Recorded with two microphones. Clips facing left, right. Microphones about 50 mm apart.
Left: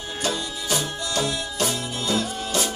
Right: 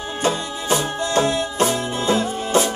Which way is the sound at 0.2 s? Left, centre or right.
Right.